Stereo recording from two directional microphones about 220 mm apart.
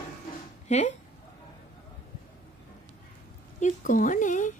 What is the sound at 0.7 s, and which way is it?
Speech, 30° left (ahead or behind).